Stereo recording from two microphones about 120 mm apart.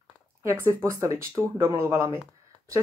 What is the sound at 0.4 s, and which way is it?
Speech, 25° right (ahead or behind).